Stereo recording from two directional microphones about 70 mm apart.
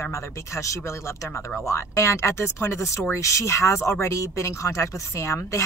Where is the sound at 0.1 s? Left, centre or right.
Left.